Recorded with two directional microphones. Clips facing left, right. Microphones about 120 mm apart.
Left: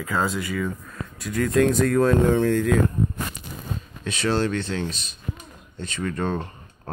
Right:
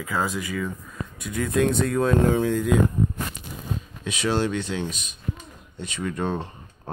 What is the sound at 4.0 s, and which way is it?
Speech, 5° right (ahead or behind).